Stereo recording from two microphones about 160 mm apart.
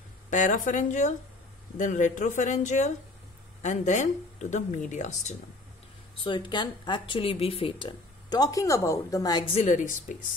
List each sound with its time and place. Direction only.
0.3 s speech: 50° left (ahead or behind)
6.1 s speech: 30° left (ahead or behind)
9.5 s speech: 45° left (ahead or behind)